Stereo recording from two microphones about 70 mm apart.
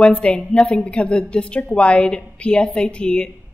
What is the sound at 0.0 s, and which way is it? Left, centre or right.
A woman's voice, centre.